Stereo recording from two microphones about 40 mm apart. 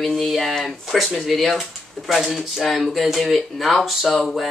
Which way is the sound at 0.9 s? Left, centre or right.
Centre.